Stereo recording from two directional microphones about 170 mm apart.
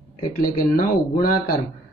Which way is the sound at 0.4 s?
55° left (ahead or behind).